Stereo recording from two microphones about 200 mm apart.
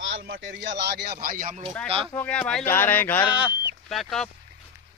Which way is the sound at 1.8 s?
30° right (ahead or behind).